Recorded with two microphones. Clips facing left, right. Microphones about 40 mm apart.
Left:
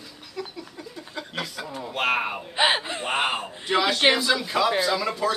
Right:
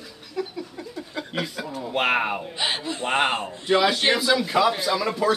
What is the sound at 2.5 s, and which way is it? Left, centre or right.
Speech, left.